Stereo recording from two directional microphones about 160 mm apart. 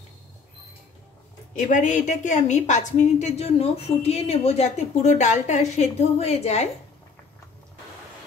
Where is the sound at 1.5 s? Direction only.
50° left (ahead or behind).